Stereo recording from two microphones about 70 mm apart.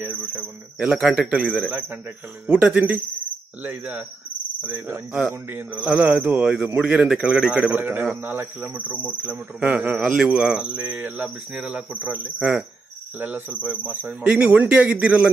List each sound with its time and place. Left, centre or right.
0.0 s speech: right
0.9 s a man's voice: centre; by 5.0 s right
5.3 s speech: right
5.7 s a man's voice: right
7.7 s a man's voice: right